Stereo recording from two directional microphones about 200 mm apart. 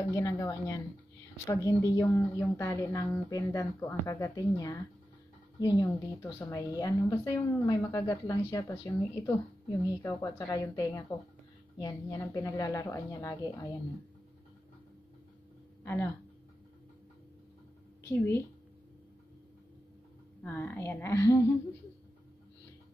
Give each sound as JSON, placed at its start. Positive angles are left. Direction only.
{"t": 0.0, "sound": "a woman's voice", "side_deg": 15}
{"t": 15.8, "sound": "speech", "side_deg": 15}
{"t": 18.0, "sound": "a woman's voice", "side_deg": 10}
{"t": 20.4, "sound": "a woman's voice", "side_deg": 10}